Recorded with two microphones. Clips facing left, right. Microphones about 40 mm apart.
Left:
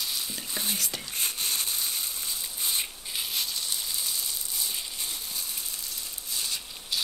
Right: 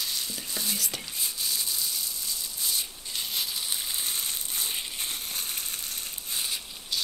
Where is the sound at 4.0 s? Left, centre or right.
Right.